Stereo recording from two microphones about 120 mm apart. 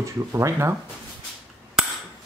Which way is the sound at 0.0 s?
25° right (ahead or behind).